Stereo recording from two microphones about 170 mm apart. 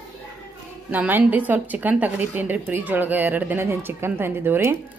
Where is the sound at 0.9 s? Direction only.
10° right (ahead or behind).